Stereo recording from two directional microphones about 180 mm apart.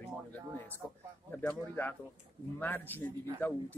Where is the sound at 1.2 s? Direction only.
10° left (ahead or behind).